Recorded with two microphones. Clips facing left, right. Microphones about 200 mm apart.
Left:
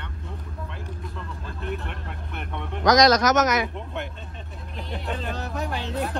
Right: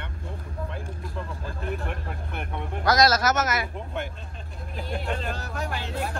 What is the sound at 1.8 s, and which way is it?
Vehicle, 45° right (ahead or behind).